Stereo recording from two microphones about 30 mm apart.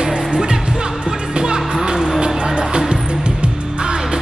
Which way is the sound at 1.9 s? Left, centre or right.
Right.